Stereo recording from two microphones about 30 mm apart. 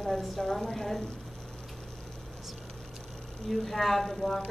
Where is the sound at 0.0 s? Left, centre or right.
Centre.